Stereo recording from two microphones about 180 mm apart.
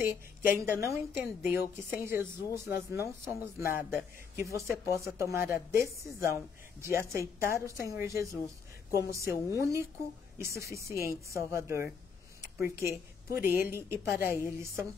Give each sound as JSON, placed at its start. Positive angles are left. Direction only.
{"t": 0.0, "sound": "a woman's voice", "side_deg": -10}